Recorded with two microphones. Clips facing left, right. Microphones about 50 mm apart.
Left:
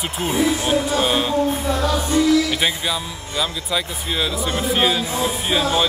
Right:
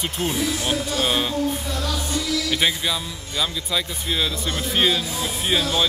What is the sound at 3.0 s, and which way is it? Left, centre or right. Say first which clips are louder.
Speech: left 2 dB; centre.